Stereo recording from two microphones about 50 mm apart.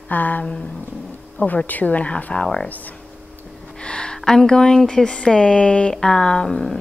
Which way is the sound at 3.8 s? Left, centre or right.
Centre.